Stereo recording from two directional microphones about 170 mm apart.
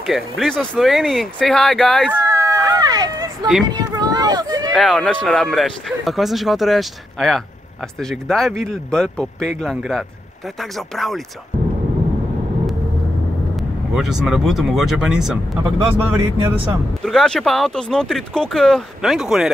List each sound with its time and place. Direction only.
0.0 s speech: centre (ahead or behind)
2.2 s a sound: 15° right (ahead or behind)
4.7 s speech: centre (ahead or behind)
13.6 s speech: centre (ahead or behind)
17.0 s speech: 5° left (ahead or behind)